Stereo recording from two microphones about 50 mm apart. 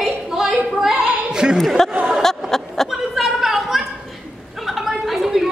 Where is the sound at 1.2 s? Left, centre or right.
Centre.